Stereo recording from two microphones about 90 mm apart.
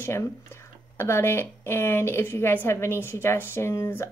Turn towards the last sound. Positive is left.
turn(degrees=30)  # may be behind; listen again after turning